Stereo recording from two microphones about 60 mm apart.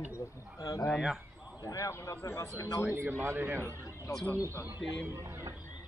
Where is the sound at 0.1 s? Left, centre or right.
Left.